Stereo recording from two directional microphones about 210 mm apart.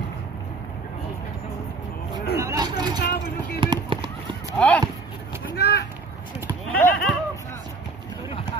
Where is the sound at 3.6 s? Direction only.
25° right (ahead or behind).